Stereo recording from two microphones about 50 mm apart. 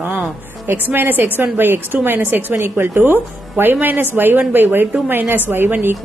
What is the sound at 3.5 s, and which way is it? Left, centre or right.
A woman's voice, right.